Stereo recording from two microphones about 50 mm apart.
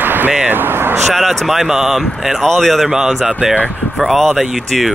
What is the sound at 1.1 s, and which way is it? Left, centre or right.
Speech, centre.